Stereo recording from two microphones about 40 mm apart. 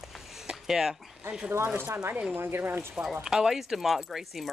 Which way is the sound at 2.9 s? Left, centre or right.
Centre.